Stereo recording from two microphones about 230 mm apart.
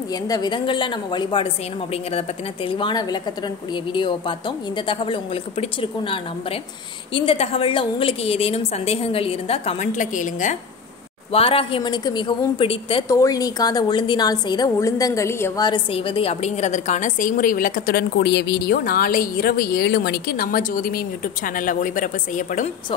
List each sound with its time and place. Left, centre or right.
0.1 s a woman's voice: centre; by 22.7 s left